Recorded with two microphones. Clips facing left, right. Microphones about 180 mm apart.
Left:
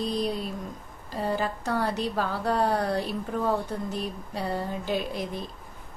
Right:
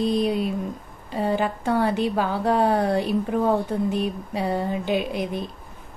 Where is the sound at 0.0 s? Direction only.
65° right (ahead or behind).